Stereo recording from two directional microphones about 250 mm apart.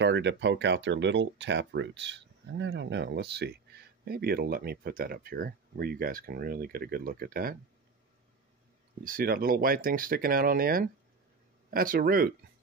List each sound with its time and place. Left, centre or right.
0.0 s speech: right
9.0 s speech: right